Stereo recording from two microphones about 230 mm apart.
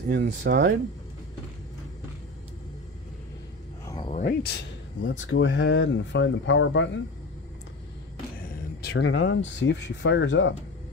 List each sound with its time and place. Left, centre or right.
0.1 s speech: right
3.8 s a sound: centre
4.1 s speech: left
5.0 s speech: left
8.4 s speech: left